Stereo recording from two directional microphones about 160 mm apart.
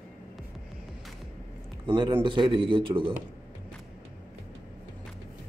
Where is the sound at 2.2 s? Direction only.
30° right (ahead or behind).